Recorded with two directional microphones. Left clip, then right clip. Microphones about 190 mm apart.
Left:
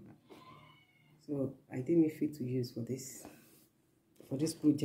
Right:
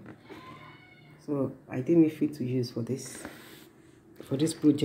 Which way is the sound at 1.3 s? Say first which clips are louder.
Right 7 dB; 20° right (ahead or behind).